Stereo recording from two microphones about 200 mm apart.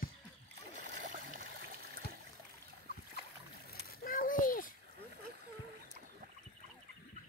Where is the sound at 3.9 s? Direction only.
45° left (ahead or behind).